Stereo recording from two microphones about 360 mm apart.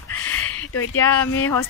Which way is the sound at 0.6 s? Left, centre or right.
Left.